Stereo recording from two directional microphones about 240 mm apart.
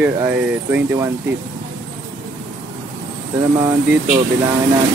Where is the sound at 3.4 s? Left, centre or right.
Centre.